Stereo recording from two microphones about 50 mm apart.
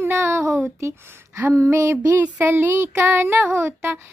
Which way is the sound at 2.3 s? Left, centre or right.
Right.